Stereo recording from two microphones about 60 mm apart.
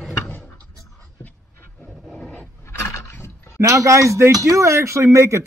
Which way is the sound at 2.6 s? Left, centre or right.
Left.